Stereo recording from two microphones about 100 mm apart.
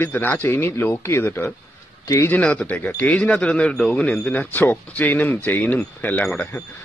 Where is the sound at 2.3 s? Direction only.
15° left (ahead or behind).